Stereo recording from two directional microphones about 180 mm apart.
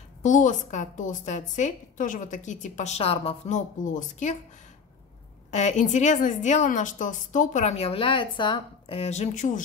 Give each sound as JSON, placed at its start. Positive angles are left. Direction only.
{"t": 0.2, "sound": "a woman's voice", "side_deg": 45}
{"t": 5.5, "sound": "a woman's voice", "side_deg": 40}